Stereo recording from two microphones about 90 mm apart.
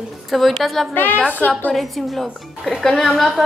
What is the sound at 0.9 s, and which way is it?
Speech, 20° left (ahead or behind).